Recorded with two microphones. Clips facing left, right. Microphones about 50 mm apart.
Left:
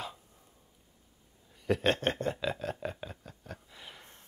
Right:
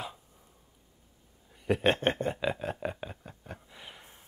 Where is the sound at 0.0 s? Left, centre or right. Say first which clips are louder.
Right 1 dB; centre.